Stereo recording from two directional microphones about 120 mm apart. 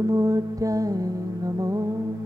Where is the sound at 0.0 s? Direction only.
25° right (ahead or behind).